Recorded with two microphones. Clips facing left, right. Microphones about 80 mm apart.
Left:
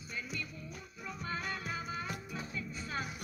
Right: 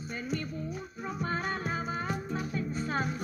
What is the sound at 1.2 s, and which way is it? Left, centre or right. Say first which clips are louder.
Music: right 6 dB; right.